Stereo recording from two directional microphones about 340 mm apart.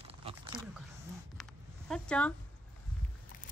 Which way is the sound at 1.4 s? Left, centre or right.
Centre.